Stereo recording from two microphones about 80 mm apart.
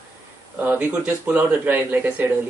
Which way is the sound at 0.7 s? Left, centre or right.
Right.